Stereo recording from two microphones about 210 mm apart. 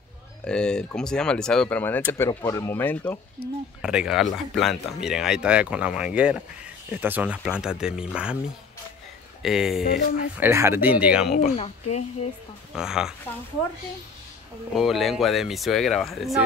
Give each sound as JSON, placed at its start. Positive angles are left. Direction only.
{"t": 0.5, "sound": "speech", "side_deg": 5}
{"t": 3.8, "sound": "speech", "side_deg": -5}
{"t": 9.4, "sound": "speech", "side_deg": 0}
{"t": 11.3, "sound": "speech", "side_deg": 30}
{"t": 12.7, "sound": "speech", "side_deg": -5}
{"t": 14.7, "sound": "speech", "side_deg": 0}